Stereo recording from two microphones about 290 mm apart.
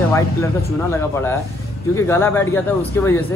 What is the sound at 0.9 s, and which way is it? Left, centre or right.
Speech, centre.